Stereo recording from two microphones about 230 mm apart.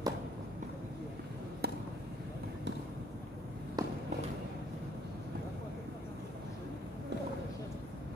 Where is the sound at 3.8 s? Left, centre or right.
Centre.